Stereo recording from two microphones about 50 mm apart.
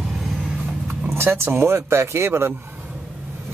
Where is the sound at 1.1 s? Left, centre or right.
Right.